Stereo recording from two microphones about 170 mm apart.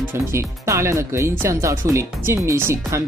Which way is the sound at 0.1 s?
15° right (ahead or behind).